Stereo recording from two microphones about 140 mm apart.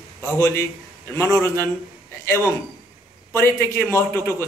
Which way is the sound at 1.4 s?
15° left (ahead or behind).